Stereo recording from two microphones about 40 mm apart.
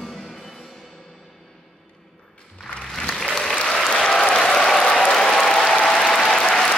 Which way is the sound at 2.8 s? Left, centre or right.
Centre.